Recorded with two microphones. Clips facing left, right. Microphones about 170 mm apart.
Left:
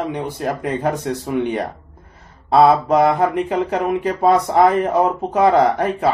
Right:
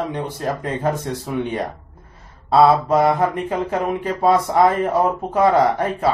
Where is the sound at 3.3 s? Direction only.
15° left (ahead or behind).